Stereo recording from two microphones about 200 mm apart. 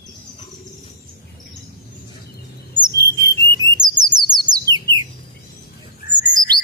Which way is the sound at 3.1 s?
50° left (ahead or behind).